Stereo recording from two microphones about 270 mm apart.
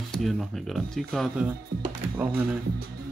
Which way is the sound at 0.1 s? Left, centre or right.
Centre.